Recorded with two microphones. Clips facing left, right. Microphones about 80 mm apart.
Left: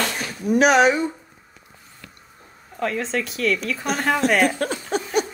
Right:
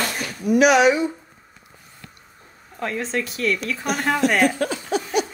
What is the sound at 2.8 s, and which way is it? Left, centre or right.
Speech, centre.